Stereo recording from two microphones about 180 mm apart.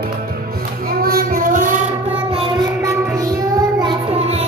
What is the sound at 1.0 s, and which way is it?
Child singing, 55° right (ahead or behind).